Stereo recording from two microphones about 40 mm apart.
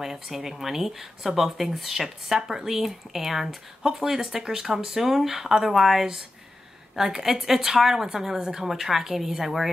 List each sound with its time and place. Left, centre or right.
0.0 s a woman's voice: centre